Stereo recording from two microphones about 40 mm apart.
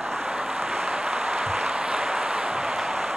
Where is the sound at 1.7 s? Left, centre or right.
Right.